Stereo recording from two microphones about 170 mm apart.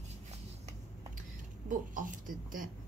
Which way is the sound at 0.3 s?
40° right (ahead or behind).